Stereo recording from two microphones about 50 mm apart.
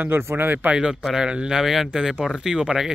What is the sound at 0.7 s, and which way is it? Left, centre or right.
Speech, centre.